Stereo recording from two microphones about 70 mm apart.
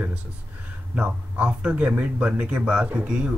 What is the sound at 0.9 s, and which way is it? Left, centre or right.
Speech, centre.